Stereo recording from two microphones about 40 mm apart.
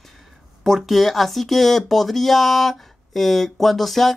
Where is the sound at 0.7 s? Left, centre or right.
Centre.